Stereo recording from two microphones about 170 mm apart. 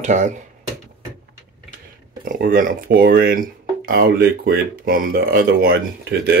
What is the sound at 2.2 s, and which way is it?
Speech, 55° right (ahead or behind).